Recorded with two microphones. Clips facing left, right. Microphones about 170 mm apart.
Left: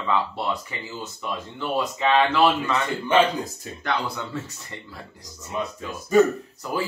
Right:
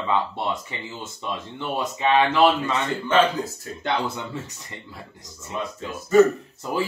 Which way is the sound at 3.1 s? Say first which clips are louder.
Even; 15° left (ahead or behind).